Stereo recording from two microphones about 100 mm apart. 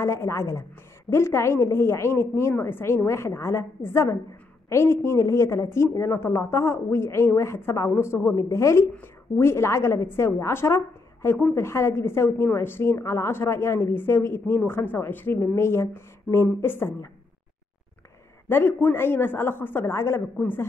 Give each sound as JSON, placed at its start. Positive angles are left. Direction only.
{"t": 0.0, "sound": "a woman's voice", "side_deg": 25}
{"t": 18.5, "sound": "a woman's voice", "side_deg": 20}